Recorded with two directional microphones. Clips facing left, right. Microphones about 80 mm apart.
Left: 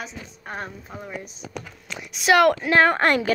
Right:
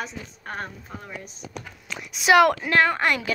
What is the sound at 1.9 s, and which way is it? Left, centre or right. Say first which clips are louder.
Speech: even; centre.